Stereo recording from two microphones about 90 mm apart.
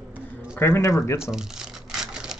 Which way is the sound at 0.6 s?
25° left (ahead or behind).